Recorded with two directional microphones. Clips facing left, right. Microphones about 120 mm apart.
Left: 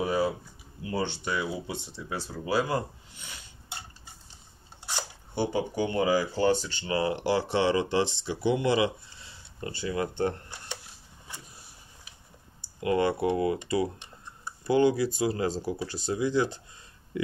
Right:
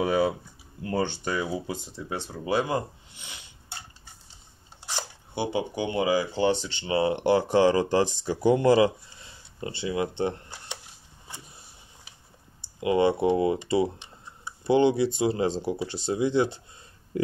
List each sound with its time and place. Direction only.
0.0 s speech: 70° right (ahead or behind)
0.8 s speech: 50° right (ahead or behind)
2.0 s speech: 25° right (ahead or behind)
5.3 s speech: 15° right (ahead or behind)
7.5 s speech: 35° right (ahead or behind)
9.8 s speech: 20° right (ahead or behind)
12.6 s speech: 20° right (ahead or behind)